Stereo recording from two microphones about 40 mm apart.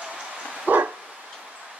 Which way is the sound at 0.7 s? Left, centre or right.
Right.